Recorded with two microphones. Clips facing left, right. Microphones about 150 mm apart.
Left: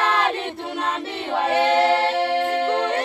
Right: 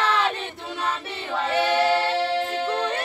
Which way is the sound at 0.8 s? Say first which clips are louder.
Left 1 dB; 70° left (ahead or behind).